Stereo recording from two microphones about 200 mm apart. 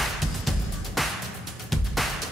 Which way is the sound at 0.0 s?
Centre (ahead or behind).